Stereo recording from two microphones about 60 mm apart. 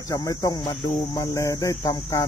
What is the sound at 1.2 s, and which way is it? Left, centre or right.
Speech, left.